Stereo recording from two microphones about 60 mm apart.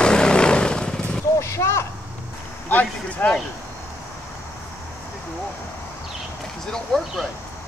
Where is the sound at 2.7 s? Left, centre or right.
Left.